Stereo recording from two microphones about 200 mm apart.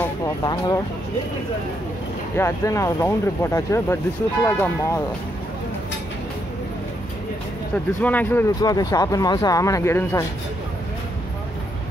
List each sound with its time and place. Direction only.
0.0 s vehicle: 15° left (ahead or behind)
2.3 s speech: 15° left (ahead or behind)
7.7 s speech: 10° left (ahead or behind)